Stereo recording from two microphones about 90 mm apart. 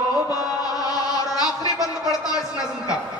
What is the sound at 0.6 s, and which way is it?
Chant, 45° left (ahead or behind).